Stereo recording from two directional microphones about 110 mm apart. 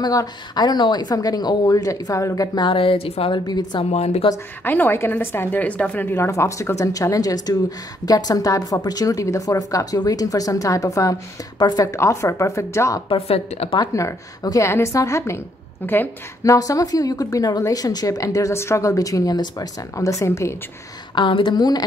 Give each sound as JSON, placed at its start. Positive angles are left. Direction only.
{"t": 0.0, "sound": "a woman's voice", "side_deg": 35}
{"t": 3.3, "sound": "a woman's voice", "side_deg": 40}
{"t": 3.9, "sound": "a woman's voice", "side_deg": 90}
{"t": 4.6, "sound": "a woman's voice", "side_deg": 20}
{"t": 13.1, "sound": "a woman's voice", "side_deg": 65}
{"t": 13.9, "sound": "a woman's voice", "side_deg": 30}
{"t": 16.4, "sound": "a woman's voice", "side_deg": 30}
{"t": 21.1, "sound": "speech", "side_deg": 50}